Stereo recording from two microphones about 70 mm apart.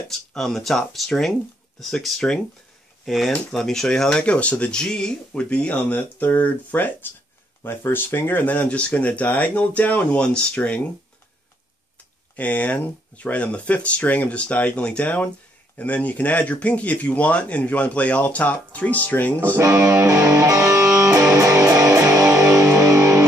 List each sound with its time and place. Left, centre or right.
0.3 s speech: centre
12.4 s speech: left
19.6 s music: right